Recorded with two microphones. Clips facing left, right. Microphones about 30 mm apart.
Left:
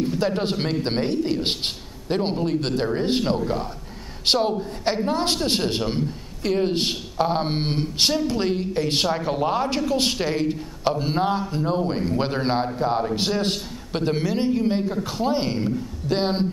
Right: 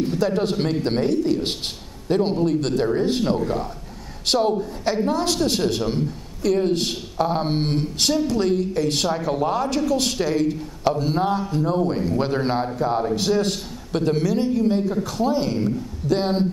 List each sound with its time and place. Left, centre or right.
0.2 s a woman's voice: left